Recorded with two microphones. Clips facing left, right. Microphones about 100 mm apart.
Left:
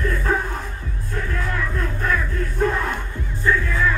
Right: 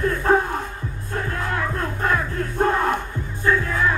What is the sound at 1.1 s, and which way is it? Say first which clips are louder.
Music: right 1 dB; 40° right (ahead or behind).